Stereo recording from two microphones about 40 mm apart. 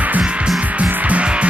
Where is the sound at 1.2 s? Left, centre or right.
Right.